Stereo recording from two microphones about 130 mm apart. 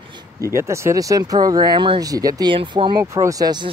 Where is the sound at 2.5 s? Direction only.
40° right (ahead or behind).